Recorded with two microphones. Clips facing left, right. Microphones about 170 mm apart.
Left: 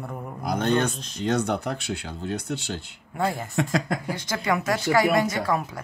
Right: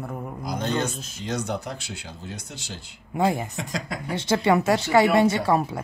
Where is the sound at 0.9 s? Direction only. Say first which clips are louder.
Left 2 dB; 5° right (ahead or behind).